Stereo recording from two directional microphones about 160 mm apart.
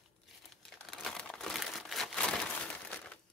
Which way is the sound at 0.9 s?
5° left (ahead or behind).